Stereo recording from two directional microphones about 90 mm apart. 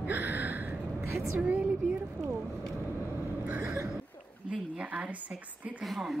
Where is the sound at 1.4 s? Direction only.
15° right (ahead or behind).